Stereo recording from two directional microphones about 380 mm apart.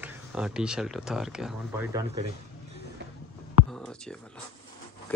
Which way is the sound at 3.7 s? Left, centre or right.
Centre.